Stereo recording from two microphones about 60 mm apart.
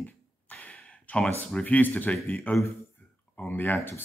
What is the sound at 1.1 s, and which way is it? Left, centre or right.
Speech, centre.